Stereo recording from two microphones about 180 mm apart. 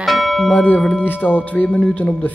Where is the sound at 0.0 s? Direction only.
Centre (ahead or behind).